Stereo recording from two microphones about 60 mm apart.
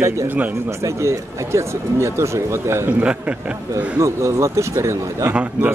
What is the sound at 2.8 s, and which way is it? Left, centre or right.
A man's voice, right.